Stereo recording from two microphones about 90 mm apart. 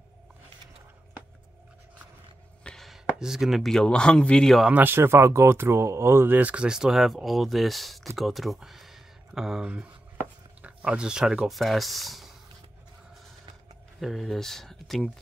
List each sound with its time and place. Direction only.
2.6 s speech: 5° left (ahead or behind)
4.6 s speech: 20° right (ahead or behind); by 12.4 s centre (ahead or behind)
13.9 s speech: centre (ahead or behind)